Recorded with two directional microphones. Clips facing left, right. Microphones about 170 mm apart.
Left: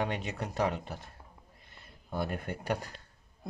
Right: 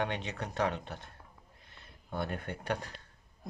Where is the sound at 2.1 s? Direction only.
5° left (ahead or behind).